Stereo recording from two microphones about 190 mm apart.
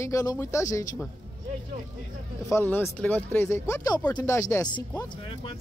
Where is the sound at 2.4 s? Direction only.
15° left (ahead or behind).